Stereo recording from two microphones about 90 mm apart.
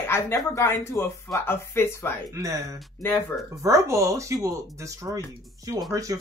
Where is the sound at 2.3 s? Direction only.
35° right (ahead or behind).